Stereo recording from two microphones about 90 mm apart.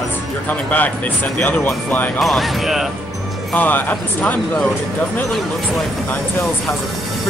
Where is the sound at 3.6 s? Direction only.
20° left (ahead or behind).